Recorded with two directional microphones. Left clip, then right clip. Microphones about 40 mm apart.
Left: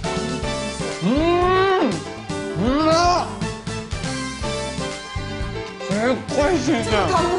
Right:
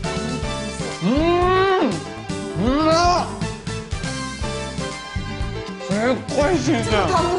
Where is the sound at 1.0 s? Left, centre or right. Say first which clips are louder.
Even; centre.